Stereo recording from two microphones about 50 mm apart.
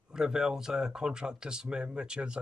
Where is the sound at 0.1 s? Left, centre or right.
Centre.